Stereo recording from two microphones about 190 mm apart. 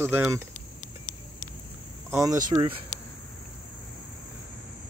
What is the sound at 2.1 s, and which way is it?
Speech, 15° right (ahead or behind).